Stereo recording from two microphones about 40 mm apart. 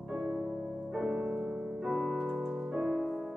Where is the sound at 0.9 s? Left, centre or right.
Centre.